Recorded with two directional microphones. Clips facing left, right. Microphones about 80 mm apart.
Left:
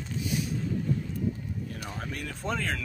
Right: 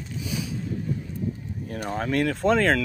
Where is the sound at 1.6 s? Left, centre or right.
Right.